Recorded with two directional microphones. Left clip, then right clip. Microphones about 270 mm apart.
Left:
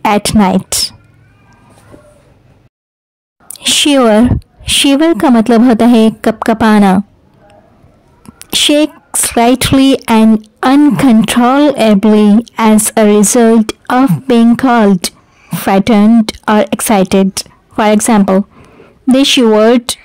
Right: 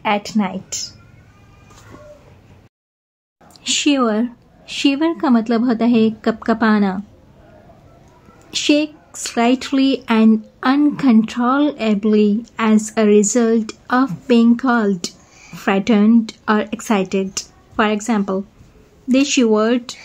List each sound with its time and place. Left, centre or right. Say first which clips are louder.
0.0 s a woman's voice: left 9 dB; left
3.5 s a woman's voice: left 8 dB; left
8.5 s a woman's voice: left 8 dB; left